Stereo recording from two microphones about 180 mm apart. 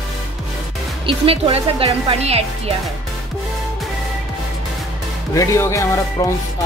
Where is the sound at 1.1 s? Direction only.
30° right (ahead or behind).